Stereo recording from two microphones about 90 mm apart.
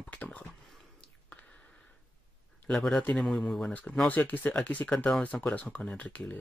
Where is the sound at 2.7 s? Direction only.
5° left (ahead or behind).